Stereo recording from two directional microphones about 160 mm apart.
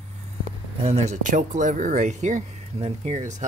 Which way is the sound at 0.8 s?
40° right (ahead or behind).